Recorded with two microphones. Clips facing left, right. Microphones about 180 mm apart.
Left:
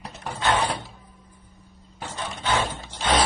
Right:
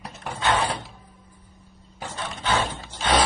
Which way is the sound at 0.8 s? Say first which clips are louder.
Even; 10° right (ahead or behind).